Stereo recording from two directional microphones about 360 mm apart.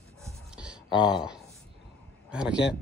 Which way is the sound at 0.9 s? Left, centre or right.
Centre.